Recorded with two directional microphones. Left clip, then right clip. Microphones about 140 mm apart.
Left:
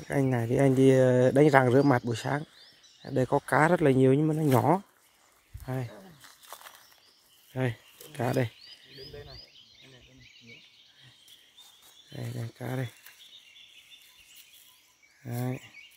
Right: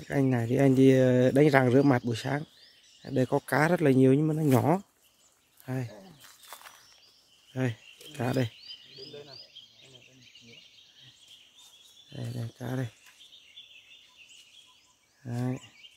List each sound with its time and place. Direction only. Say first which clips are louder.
0.0 s speech: even; 5° right (ahead or behind)
0.6 s speech: even; 20° right (ahead or behind)
0.8 s speech: left 2 dB; 10° right (ahead or behind)
6.2 s a sound: left 2 dB; 90° left
7.5 s speech: left 1 dB; centre (ahead or behind)
12.1 s speech: left 1 dB; 5° left (ahead or behind)
15.2 s speech: even; centre (ahead or behind)